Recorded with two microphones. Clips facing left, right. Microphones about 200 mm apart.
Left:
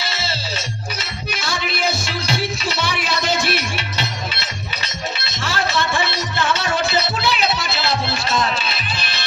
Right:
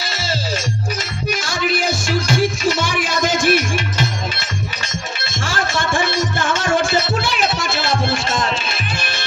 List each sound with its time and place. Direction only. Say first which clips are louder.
0.0 s music: right 2 dB; 45° right (ahead or behind)
1.4 s music: right 1 dB; 50° right (ahead or behind)